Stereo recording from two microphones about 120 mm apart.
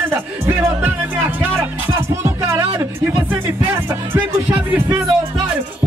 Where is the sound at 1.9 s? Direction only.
25° right (ahead or behind).